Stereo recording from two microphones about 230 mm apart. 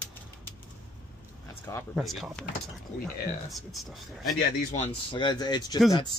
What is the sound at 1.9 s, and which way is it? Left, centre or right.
Speech, centre.